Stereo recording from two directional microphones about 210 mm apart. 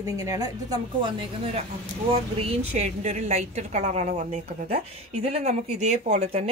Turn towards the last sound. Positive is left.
turn(degrees=-30)  # may be behind; listen again after turning